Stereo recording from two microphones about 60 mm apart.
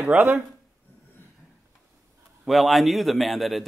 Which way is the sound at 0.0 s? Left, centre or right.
Right.